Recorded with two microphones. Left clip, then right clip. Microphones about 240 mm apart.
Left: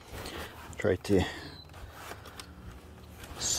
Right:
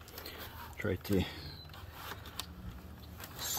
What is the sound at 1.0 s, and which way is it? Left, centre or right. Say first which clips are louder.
Speech: left 7 dB; centre.